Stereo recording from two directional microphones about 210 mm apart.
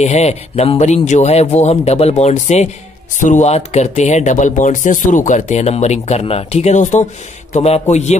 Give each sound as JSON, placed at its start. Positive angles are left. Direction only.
{"t": 0.0, "sound": "speech", "side_deg": 30}